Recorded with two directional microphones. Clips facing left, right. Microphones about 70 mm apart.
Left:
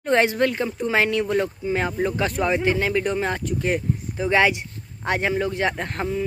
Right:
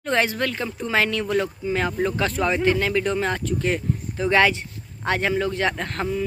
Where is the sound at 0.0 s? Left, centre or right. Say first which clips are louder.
Left 3 dB; left.